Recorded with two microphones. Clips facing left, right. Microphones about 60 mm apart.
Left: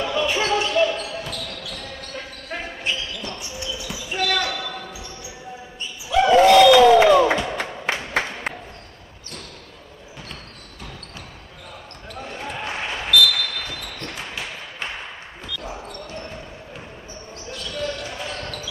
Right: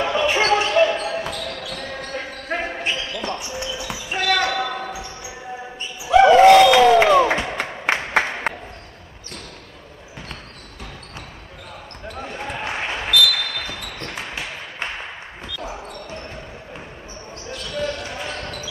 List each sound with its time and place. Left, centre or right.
0.0 s basketball bounce: right
6.0 s basketball bounce: right
6.3 s a sound: right
6.6 s a sound: right
7.8 s a sound: right
8.2 s applause: right
12.2 s basketball bounce: centre
15.6 s basketball bounce: centre
17.7 s basketball bounce: centre